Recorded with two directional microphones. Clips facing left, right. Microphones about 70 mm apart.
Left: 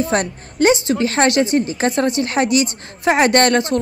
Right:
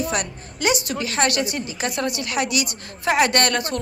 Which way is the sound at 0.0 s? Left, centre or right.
Left.